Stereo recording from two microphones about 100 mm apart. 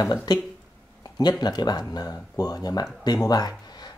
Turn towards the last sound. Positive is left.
turn(degrees=45)  # may be behind; listen again after turning